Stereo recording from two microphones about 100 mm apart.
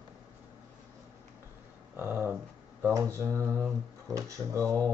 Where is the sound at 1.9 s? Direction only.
20° right (ahead or behind).